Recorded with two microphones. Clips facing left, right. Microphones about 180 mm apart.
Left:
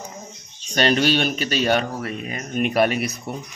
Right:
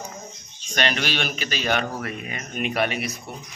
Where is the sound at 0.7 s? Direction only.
35° left (ahead or behind).